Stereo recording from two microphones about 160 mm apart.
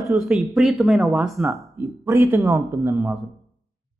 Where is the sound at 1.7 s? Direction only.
20° right (ahead or behind).